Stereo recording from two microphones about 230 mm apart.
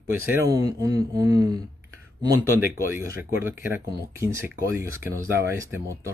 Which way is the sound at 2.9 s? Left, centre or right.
Centre.